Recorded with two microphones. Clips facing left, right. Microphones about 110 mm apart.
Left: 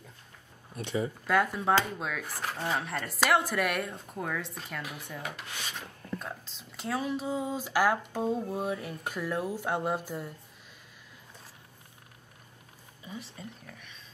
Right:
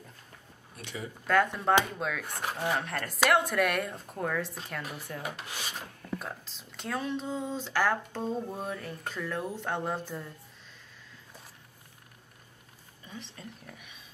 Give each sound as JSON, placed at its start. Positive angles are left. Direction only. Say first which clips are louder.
{"t": 0.7, "sound": "speech", "louder": "left 8 dB", "side_deg": 25}
{"t": 1.2, "sound": "speech", "louder": "right 3 dB", "side_deg": 5}
{"t": 2.4, "sound": "speech", "louder": "right 2 dB", "side_deg": -15}
{"t": 2.8, "sound": "speech", "louder": "right 1 dB", "side_deg": 0}
{"t": 13.0, "sound": "speech", "louder": "left 2 dB", "side_deg": 5}
{"t": 13.7, "sound": "speech", "louder": "even", "side_deg": -10}